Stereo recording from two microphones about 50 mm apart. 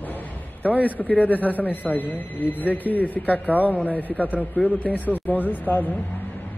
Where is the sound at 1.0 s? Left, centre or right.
Left.